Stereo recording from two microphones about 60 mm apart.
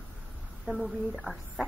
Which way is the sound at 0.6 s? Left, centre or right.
Centre.